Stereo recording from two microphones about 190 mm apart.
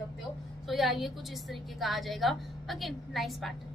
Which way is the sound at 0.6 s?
Centre (ahead or behind).